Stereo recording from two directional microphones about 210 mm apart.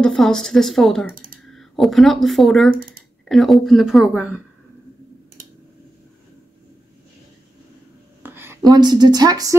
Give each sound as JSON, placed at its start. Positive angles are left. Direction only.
{"t": 0.0, "sound": "a woman's voice", "side_deg": 5}
{"t": 1.1, "sound": "typing", "side_deg": -40}
{"t": 1.5, "sound": "speech", "side_deg": 0}
{"t": 2.7, "sound": "speech", "side_deg": -40}
{"t": 3.3, "sound": "a woman's voice", "side_deg": 0}
{"t": 8.2, "sound": "speech", "side_deg": -10}